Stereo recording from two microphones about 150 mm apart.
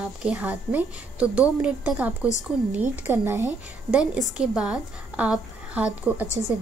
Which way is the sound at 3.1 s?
20° right (ahead or behind).